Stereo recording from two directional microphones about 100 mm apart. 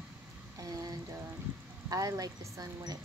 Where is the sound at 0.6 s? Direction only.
35° right (ahead or behind).